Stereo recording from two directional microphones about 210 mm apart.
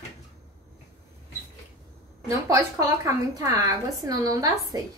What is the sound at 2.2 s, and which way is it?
A woman's voice, 15° right (ahead or behind).